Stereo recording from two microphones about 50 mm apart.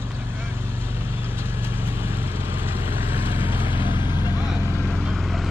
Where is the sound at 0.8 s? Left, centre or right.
Right.